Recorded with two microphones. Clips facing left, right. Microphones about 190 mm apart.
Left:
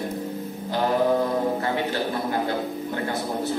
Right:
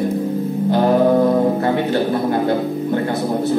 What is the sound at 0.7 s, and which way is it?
Music, 50° right (ahead or behind).